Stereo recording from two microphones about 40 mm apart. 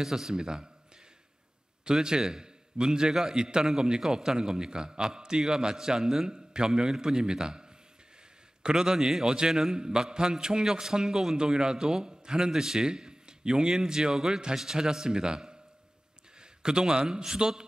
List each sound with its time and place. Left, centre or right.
0.0 s a man's voice: centre
1.9 s a man's voice: centre